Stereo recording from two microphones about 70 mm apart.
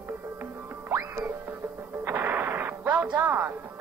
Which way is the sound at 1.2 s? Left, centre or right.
Right.